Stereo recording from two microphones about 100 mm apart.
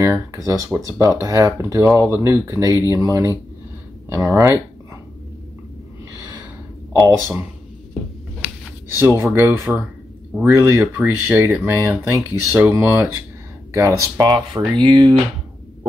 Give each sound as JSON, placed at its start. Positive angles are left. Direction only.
{"t": 0.0, "sound": "speech", "side_deg": -30}
{"t": 7.1, "sound": "speech", "side_deg": -30}
{"t": 8.4, "sound": "a sound", "side_deg": -10}
{"t": 9.0, "sound": "speech", "side_deg": -25}
{"t": 13.7, "sound": "speech", "side_deg": -30}
{"t": 14.7, "sound": "speech", "side_deg": -50}